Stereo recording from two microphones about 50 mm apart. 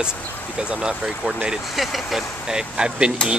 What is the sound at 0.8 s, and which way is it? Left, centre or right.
Speech, centre.